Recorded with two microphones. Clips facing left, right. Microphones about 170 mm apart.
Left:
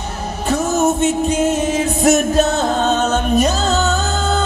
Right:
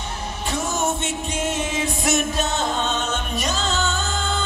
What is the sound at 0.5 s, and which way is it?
Music, 40° left (ahead or behind).